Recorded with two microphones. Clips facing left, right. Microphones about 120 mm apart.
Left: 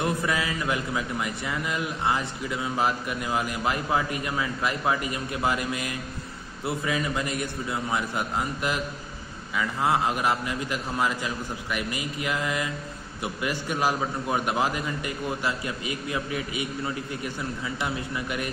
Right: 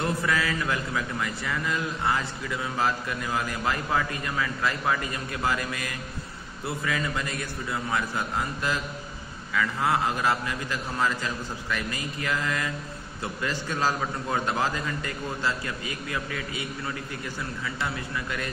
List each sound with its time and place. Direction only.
0.0 s a man's voice: 20° left (ahead or behind)